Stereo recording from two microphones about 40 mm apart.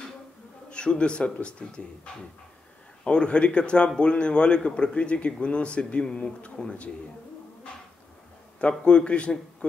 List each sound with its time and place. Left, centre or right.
0.7 s a man's voice: left
3.0 s a man's voice: left
8.5 s a man's voice: left